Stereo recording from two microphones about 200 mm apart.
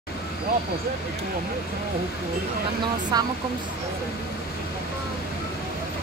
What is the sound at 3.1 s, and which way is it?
Speech, 20° right (ahead or behind).